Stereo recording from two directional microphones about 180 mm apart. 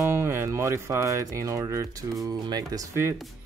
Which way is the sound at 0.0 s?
15° right (ahead or behind).